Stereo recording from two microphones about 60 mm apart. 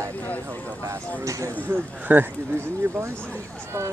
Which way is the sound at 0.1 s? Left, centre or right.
Left.